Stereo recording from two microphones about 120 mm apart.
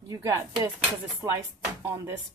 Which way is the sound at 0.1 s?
30° right (ahead or behind).